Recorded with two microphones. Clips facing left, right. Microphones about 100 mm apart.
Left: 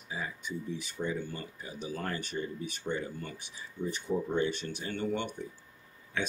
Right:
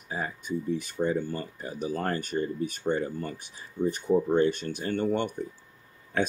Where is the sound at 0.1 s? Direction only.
45° right (ahead or behind).